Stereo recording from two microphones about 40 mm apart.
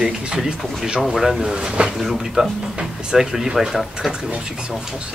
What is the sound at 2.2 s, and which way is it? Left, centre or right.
Speech, centre.